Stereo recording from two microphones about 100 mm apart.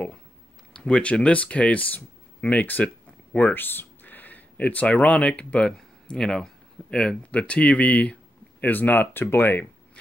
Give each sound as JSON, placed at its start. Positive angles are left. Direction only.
{"t": 0.7, "sound": "speech", "side_deg": 10}